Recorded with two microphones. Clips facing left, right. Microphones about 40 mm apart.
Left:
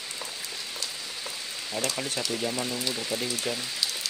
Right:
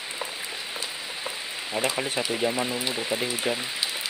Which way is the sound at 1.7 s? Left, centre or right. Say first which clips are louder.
Right 4 dB; right.